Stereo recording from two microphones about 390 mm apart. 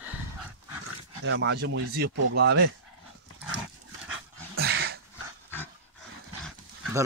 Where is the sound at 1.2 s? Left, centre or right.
Right.